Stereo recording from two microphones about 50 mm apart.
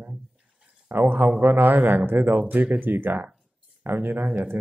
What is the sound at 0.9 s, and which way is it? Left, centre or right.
A man's voice, right.